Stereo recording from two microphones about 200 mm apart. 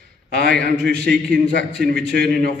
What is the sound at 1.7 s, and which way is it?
Speech, 55° right (ahead or behind).